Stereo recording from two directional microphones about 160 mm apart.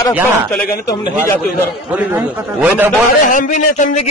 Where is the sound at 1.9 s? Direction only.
10° right (ahead or behind).